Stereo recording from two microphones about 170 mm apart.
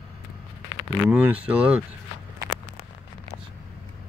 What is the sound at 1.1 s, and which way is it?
Speech, 10° right (ahead or behind).